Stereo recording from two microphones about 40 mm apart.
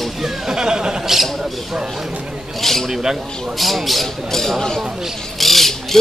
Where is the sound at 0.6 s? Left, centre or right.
Centre.